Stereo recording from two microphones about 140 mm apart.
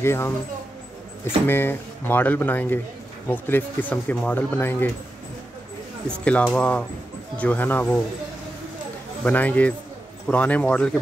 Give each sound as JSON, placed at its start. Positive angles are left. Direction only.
{"t": 0.0, "sound": "speech", "side_deg": 20}
{"t": 6.0, "sound": "speech", "side_deg": 10}
{"t": 9.2, "sound": "speech", "side_deg": 10}